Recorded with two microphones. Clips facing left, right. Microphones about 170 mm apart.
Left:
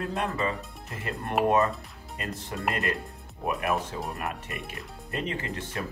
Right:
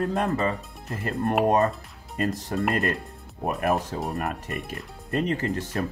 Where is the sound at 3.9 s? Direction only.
45° right (ahead or behind).